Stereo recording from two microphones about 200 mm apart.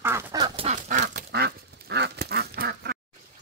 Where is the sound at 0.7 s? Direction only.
40° right (ahead or behind).